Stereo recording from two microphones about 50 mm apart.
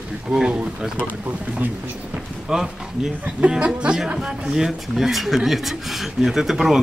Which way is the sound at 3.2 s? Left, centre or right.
Right.